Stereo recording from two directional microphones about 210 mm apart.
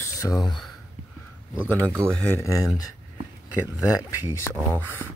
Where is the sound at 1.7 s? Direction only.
10° left (ahead or behind).